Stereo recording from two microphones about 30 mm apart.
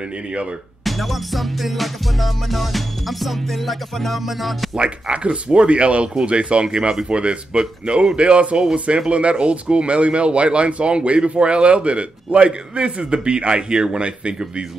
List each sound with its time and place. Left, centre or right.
0.8 s music: centre
4.7 s speech: right